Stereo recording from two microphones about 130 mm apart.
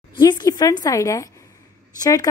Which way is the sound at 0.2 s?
30° left (ahead or behind).